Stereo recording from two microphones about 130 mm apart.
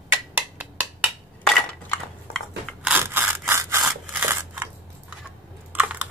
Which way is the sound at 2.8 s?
15° right (ahead or behind).